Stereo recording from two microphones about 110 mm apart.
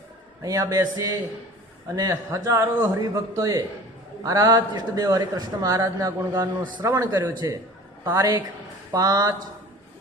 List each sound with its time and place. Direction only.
0.4 s a man's voice: 35° right (ahead or behind)